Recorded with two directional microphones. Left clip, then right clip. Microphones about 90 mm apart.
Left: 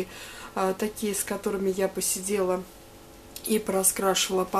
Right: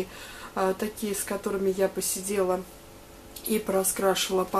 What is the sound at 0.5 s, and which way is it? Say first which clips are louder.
A woman's voice: even; 35° left (ahead or behind).